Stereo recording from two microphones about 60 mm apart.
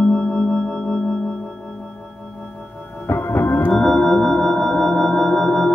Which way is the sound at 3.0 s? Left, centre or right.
Left.